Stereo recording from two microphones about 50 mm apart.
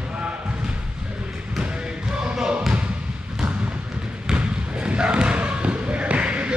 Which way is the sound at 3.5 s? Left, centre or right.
Right.